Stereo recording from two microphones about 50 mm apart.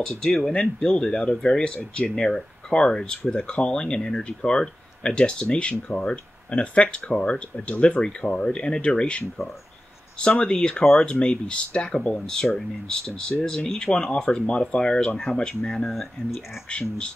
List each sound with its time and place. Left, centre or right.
0.0 s speech: centre
15.9 s speech: centre
16.7 s speech: left